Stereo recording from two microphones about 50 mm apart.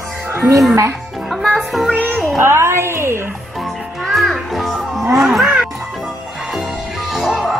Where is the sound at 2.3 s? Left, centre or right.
Right.